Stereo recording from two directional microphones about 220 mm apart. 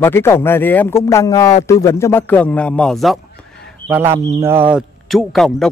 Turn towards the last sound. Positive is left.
turn(degrees=0)  # may be behind; listen again after turning